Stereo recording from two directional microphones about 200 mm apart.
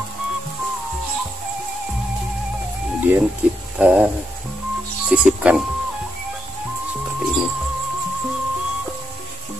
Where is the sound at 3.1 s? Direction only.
10° right (ahead or behind).